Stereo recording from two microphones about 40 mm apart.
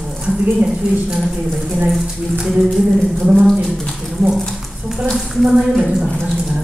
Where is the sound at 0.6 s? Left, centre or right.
Centre.